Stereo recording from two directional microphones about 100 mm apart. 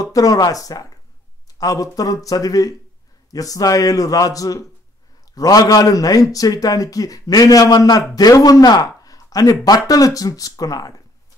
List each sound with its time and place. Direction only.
0.0 s a man's voice: 35° left (ahead or behind)